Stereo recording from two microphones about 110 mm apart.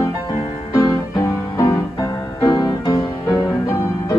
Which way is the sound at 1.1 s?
30° left (ahead or behind).